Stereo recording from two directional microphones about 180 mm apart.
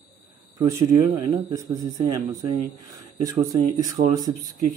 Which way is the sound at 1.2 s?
20° right (ahead or behind).